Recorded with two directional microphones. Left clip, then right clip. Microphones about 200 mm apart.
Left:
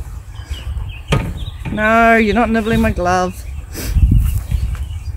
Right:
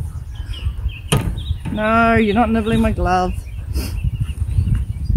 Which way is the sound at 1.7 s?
40° left (ahead or behind).